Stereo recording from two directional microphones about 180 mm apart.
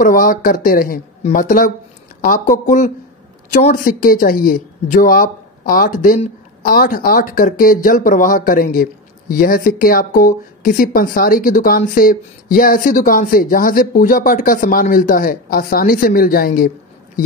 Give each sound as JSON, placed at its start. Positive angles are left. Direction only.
{"t": 0.0, "sound": "speech", "side_deg": 50}